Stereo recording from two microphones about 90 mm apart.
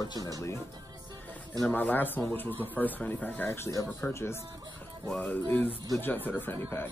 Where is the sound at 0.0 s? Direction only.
45° left (ahead or behind).